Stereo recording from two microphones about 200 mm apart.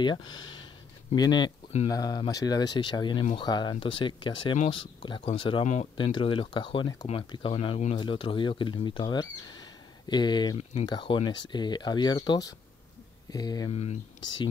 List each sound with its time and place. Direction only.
0.0 s speech: 20° left (ahead or behind)